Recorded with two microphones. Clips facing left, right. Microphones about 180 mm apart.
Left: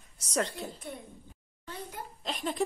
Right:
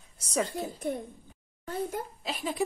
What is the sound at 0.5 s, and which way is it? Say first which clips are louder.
Speech: right 8 dB; 45° right (ahead or behind).